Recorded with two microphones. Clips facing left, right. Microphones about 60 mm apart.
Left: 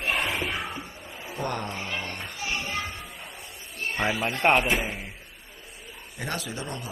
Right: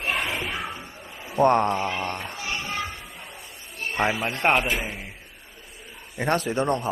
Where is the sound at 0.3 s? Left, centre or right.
Right.